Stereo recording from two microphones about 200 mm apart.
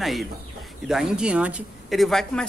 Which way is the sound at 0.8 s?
5° right (ahead or behind).